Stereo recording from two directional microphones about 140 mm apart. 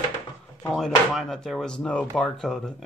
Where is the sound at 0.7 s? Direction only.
Centre (ahead or behind).